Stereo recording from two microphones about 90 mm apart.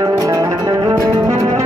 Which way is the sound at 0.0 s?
40° right (ahead or behind).